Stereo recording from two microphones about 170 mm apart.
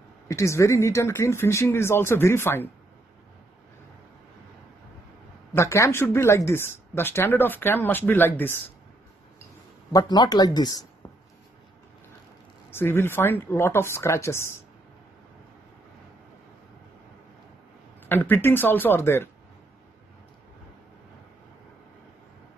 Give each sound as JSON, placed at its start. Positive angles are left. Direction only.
{"t": 0.3, "sound": "speech", "side_deg": 15}
{"t": 5.5, "sound": "speech", "side_deg": 15}
{"t": 9.9, "sound": "speech", "side_deg": 25}
{"t": 12.7, "sound": "speech", "side_deg": 15}
{"t": 18.0, "sound": "speech", "side_deg": 10}